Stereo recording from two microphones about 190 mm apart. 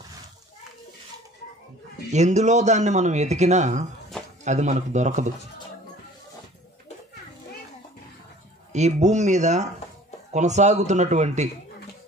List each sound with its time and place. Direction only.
2.1 s speech: 35° right (ahead or behind)
8.7 s speech: 35° right (ahead or behind)